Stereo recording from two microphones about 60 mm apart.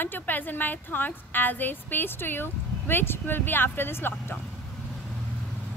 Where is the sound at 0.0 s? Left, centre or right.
Left.